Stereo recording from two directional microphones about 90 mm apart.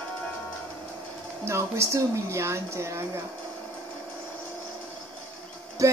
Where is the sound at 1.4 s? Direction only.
30° right (ahead or behind).